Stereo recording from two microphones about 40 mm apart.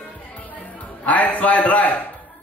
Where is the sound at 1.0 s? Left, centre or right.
Left.